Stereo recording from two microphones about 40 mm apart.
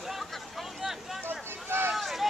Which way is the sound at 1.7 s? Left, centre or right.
Right.